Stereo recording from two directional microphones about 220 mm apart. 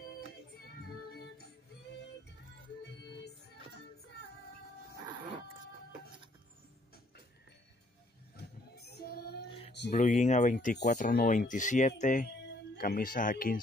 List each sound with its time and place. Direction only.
8.4 s child singing: 45° left (ahead or behind)
9.8 s speech: 30° left (ahead or behind)